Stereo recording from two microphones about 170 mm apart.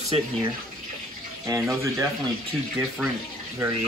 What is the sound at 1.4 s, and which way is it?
Speech, 15° right (ahead or behind).